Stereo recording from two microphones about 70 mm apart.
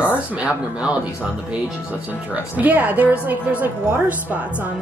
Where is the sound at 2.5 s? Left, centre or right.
Right.